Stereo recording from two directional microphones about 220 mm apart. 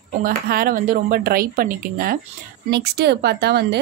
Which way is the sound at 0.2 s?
40° right (ahead or behind).